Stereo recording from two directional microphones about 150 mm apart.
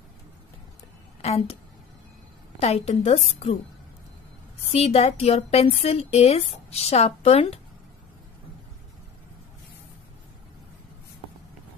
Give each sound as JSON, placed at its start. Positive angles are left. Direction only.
{"t": 1.2, "sound": "a woman's voice", "side_deg": 45}
{"t": 2.6, "sound": "speech", "side_deg": 45}
{"t": 4.7, "sound": "speech", "side_deg": 45}